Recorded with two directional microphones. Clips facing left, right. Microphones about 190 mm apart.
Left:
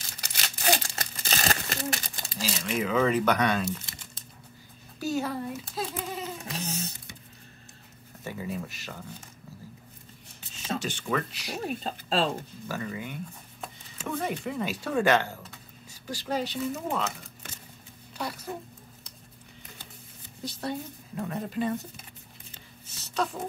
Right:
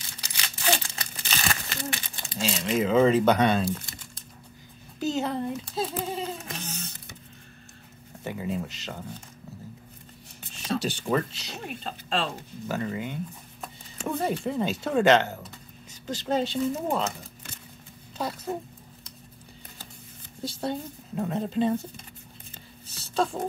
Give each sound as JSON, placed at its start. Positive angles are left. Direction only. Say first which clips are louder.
{"t": 0.0, "sound": "crumpling", "louder": "left 1 dB", "side_deg": 40}
{"t": 2.3, "sound": "a woman's voice", "louder": "right 4 dB", "side_deg": -30}
{"t": 3.6, "sound": "crumpling", "louder": "right 3 dB", "side_deg": 25}
{"t": 5.0, "sound": "a child's voice", "louder": "right 2 dB", "side_deg": -20}
{"t": 6.0, "sound": "a sound", "louder": "right 4 dB", "side_deg": -30}
{"t": 8.2, "sound": "a woman's voice", "louder": "right 3 dB", "side_deg": -20}
{"t": 10.7, "sound": "speech", "louder": "right 4 dB", "side_deg": -35}
{"t": 11.6, "sound": "speech", "louder": "left 3 dB", "side_deg": 40}
{"t": 12.6, "sound": "a woman's voice", "louder": "right 5 dB", "side_deg": -20}
{"t": 14.2, "sound": "a woman's voice", "louder": "right 5 dB", "side_deg": -30}
{"t": 18.1, "sound": "a sound", "louder": "right 3 dB", "side_deg": -20}
{"t": 20.4, "sound": "a woman's voice", "louder": "right 3 dB", "side_deg": -25}
{"t": 22.8, "sound": "a sound", "louder": "right 3 dB", "side_deg": -30}